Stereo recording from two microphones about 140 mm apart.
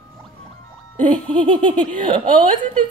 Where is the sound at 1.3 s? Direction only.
35° right (ahead or behind).